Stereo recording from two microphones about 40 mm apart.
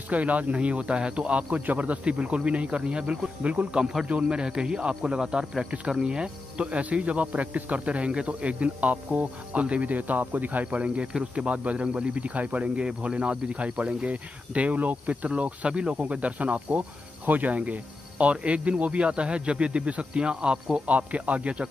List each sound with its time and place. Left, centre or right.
0.1 s speech: right
5.4 s speech: centre
6.8 s speech: right
10.7 s speech: right
11.8 s speech: right
17.3 s cricket: right
17.6 s speech: right
20.7 s speech: right